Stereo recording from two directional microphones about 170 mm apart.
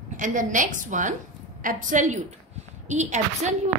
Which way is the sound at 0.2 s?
50° right (ahead or behind).